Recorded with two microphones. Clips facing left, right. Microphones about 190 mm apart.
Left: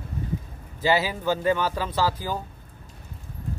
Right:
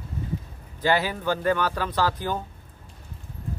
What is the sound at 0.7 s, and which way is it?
Speech, 10° left (ahead or behind).